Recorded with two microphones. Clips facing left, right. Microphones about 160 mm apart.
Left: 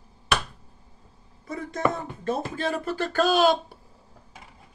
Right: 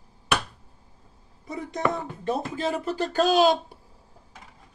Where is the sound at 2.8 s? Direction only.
50° left (ahead or behind).